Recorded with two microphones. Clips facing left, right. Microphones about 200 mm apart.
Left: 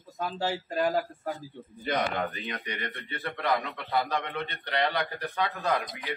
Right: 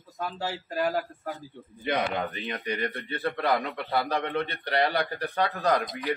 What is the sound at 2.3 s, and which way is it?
Speech, 35° right (ahead or behind).